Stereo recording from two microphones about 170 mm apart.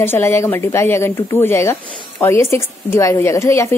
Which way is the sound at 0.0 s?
15° left (ahead or behind).